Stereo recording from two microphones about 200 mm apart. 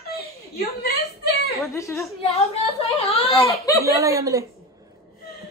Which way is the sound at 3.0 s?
30° left (ahead or behind).